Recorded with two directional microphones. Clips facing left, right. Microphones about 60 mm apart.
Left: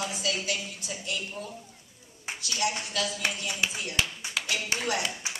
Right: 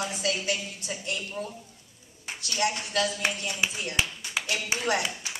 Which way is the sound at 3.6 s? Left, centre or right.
Right.